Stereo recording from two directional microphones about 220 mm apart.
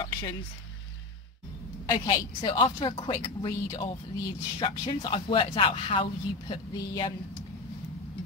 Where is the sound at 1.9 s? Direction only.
20° left (ahead or behind).